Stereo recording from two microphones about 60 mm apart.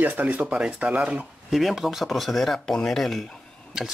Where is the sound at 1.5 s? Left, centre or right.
Centre.